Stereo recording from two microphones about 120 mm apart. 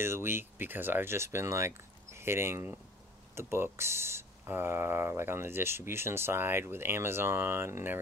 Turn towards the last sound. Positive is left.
turn(degrees=-20)  # may be behind; listen again after turning